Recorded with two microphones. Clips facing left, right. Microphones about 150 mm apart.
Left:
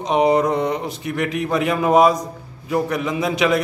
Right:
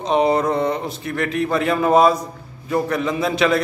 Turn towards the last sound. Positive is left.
turn(degrees=15)  # may be behind; listen again after turning